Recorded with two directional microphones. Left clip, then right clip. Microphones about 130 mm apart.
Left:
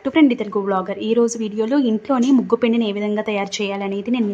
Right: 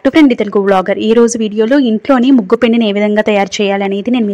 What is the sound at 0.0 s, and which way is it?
Speech, 55° right (ahead or behind).